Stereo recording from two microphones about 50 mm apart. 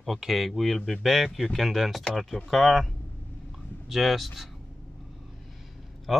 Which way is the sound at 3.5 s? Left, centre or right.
Centre.